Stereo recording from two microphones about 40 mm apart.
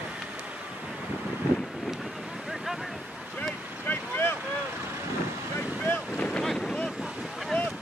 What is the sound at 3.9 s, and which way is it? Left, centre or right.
Vehicle, left.